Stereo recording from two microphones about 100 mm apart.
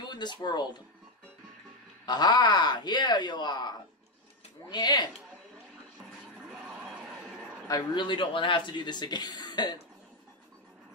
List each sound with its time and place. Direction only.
0.1 s speech: 45° left (ahead or behind)
2.0 s speech: 45° left (ahead or behind)
7.9 s speech: 55° left (ahead or behind)